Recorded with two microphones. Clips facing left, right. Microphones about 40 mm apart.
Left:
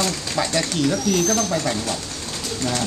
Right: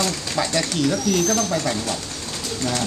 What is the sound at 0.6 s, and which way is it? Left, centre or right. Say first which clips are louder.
Speech: even; centre.